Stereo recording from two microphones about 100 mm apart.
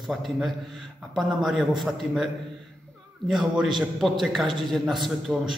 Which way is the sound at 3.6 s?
Centre (ahead or behind).